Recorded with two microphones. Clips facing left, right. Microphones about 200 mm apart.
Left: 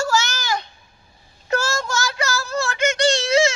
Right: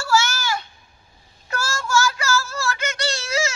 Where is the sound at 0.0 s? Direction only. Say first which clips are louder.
Even; 40° left (ahead or behind).